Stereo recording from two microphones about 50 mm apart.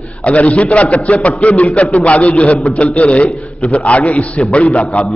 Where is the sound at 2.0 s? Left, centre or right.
Left.